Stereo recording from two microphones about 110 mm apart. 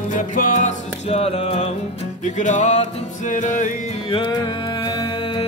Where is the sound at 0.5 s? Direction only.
90° left.